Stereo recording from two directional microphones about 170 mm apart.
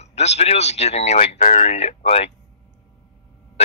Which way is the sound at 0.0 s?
40° left (ahead or behind).